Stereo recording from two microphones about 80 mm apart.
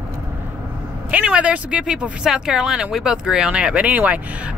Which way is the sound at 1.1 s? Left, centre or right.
Centre.